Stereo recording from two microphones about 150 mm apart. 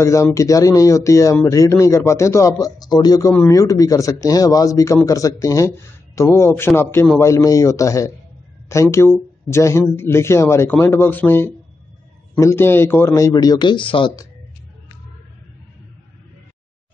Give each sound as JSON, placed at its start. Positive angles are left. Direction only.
{"t": 0.0, "sound": "a man's voice", "side_deg": 20}